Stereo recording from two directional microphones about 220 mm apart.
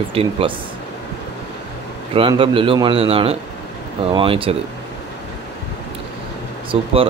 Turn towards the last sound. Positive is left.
turn(degrees=-25)  # may be behind; listen again after turning